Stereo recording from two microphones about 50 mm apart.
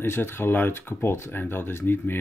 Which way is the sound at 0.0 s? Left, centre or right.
Left.